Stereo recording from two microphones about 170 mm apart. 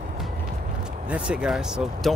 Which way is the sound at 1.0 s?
5° right (ahead or behind).